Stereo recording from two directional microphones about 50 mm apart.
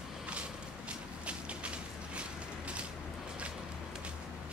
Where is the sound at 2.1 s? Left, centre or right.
Right.